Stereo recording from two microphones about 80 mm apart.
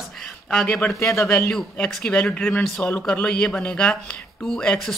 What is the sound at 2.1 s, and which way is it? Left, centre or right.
Speech, centre.